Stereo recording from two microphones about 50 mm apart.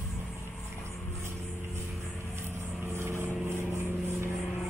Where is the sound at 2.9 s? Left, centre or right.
Right.